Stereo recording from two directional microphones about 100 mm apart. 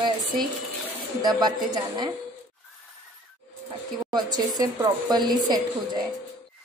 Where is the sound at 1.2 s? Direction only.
45° right (ahead or behind).